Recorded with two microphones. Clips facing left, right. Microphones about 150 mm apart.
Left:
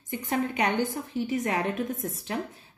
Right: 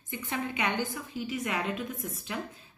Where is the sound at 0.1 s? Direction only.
40° left (ahead or behind).